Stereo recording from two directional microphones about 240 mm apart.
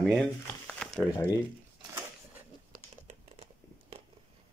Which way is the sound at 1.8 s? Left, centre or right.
Centre.